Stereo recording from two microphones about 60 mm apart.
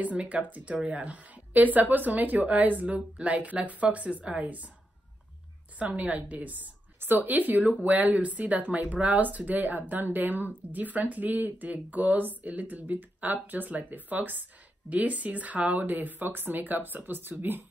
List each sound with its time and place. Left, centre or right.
0.0 s a woman's voice: right
5.9 s a woman's voice: right